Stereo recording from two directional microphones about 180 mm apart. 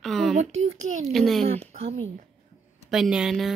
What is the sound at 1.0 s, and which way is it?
Speech, centre (ahead or behind).